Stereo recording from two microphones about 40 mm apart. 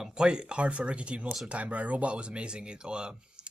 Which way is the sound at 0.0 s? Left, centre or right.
Right.